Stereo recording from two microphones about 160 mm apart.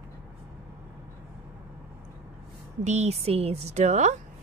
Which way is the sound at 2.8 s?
45° right (ahead or behind).